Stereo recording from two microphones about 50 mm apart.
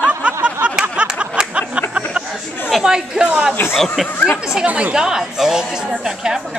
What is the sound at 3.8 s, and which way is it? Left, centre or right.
Speech, centre.